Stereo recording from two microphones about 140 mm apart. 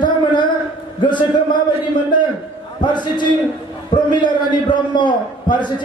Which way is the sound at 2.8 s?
35° left (ahead or behind).